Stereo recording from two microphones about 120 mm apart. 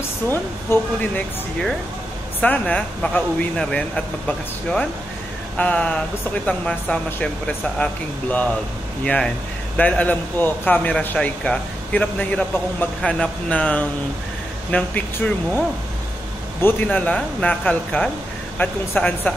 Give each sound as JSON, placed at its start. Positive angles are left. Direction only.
{"t": 0.3, "sound": "a man's voice", "side_deg": 15}
{"t": 2.4, "sound": "a man's voice", "side_deg": 10}
{"t": 16.6, "sound": "a man's voice", "side_deg": 15}